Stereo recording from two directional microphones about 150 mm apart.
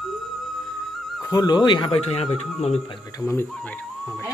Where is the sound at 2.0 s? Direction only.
45° left (ahead or behind).